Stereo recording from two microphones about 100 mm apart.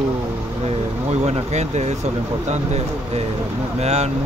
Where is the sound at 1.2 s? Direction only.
90° right.